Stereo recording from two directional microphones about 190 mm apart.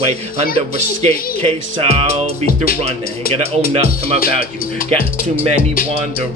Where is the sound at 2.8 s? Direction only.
30° right (ahead or behind).